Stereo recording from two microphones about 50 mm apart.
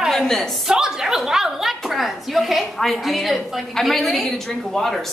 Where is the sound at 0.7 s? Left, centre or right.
Centre.